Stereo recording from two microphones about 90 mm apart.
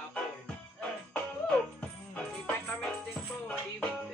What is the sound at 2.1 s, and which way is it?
Music, 10° left (ahead or behind).